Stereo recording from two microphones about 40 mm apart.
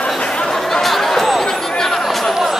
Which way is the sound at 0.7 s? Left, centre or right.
Centre.